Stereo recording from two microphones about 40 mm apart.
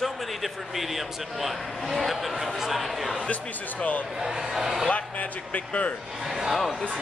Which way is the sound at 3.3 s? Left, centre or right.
Left.